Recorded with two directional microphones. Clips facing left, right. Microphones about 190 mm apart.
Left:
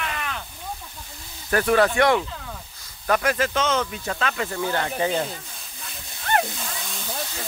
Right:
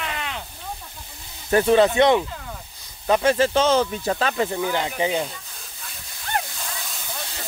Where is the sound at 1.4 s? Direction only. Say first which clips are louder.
Right 3 dB; 25° right (ahead or behind).